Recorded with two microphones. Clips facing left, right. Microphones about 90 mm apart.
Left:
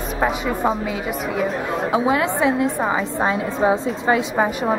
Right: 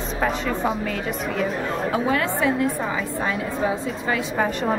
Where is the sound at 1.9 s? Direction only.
20° left (ahead or behind).